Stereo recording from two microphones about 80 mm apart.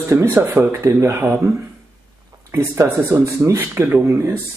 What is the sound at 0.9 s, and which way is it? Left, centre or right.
Speech, right.